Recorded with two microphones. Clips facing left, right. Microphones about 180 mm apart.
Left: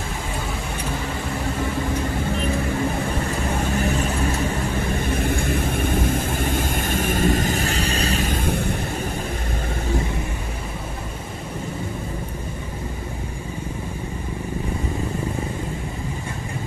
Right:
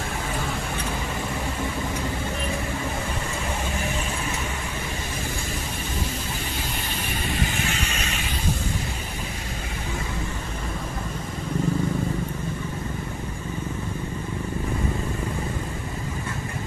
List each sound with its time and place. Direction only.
5.1 s vehicle: 60° left (ahead or behind); by 8.4 s 40° left (ahead or behind)